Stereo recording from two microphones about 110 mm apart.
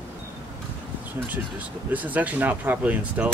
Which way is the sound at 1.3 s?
15° right (ahead or behind).